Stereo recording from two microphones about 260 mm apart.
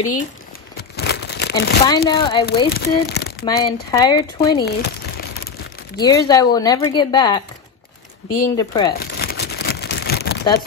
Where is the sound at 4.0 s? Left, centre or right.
Centre.